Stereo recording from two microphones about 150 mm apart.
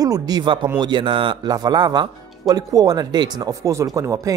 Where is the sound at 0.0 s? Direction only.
25° right (ahead or behind).